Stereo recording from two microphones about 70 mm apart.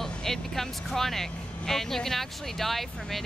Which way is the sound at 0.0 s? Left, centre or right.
Centre.